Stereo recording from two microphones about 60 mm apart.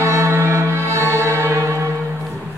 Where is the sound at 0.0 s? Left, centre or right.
Right.